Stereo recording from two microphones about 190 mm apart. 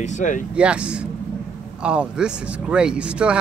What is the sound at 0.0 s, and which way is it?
Speech, 40° left (ahead or behind).